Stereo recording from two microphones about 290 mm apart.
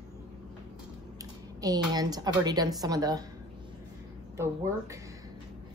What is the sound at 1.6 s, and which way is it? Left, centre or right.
A woman's voice, centre.